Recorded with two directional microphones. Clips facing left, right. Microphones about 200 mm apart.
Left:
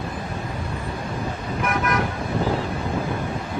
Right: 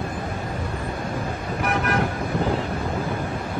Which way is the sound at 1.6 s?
35° right (ahead or behind).